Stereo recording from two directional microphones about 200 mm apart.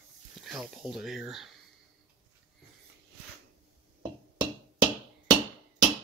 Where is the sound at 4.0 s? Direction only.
20° right (ahead or behind).